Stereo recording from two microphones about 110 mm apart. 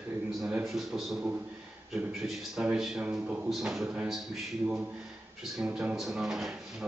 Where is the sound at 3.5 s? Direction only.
5° right (ahead or behind).